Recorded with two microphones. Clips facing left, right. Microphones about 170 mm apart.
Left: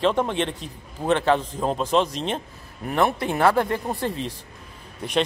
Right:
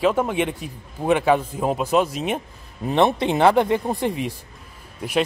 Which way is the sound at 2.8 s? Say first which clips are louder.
Right 4 dB; 20° right (ahead or behind).